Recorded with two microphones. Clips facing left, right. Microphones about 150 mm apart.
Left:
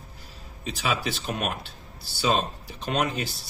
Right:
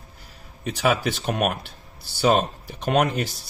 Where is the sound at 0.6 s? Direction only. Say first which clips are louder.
Right 6 dB; 55° right (ahead or behind).